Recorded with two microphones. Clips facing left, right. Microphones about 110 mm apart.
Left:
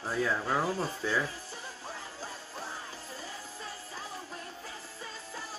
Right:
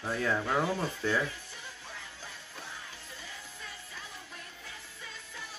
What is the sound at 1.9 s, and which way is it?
Music, 35° left (ahead or behind).